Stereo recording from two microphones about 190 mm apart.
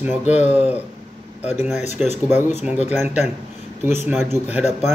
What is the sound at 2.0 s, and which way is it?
Speech, 35° left (ahead or behind).